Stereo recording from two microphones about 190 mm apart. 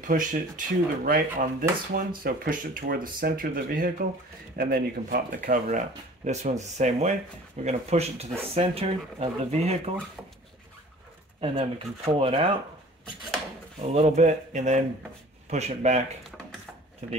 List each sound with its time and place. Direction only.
0.0 s speech: 45° right (ahead or behind)
11.4 s speech: 30° right (ahead or behind)
13.8 s speech: 35° right (ahead or behind)
17.0 s speech: 35° right (ahead or behind)